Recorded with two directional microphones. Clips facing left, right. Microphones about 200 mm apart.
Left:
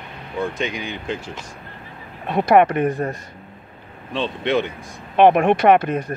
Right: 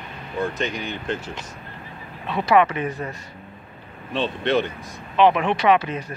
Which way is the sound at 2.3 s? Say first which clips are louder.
Left 4 dB; 50° left (ahead or behind).